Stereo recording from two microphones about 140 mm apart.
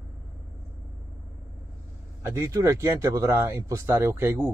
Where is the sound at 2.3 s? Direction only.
20° right (ahead or behind).